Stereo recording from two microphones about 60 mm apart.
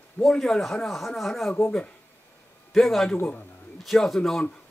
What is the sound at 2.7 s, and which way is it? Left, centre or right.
Speech, centre.